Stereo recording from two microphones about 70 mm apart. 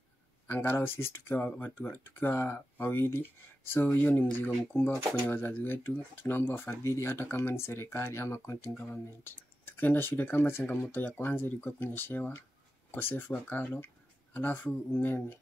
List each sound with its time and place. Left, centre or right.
0.5 s speech: left
8.7 s speech: left